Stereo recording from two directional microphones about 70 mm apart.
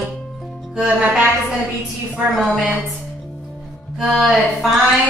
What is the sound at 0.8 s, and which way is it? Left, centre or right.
Speech, centre.